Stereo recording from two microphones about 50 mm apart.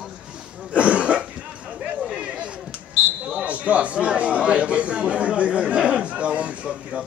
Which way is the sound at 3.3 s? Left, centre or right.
Right.